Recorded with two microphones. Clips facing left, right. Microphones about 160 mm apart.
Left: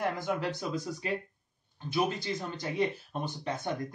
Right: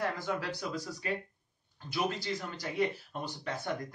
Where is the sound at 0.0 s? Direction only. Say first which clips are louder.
Left 3 dB; 20° left (ahead or behind).